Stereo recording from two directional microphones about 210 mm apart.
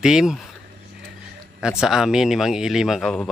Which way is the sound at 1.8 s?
5° right (ahead or behind).